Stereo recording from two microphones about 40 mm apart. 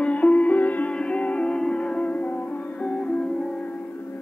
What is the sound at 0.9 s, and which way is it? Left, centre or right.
Music, left.